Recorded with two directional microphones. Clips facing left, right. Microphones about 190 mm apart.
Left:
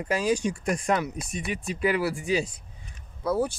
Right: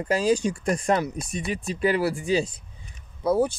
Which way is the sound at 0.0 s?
30° right (ahead or behind).